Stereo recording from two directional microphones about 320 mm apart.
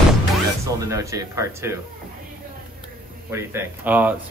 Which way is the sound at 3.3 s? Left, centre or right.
Centre.